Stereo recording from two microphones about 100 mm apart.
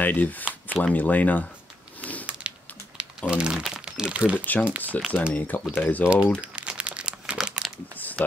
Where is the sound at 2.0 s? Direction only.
15° left (ahead or behind).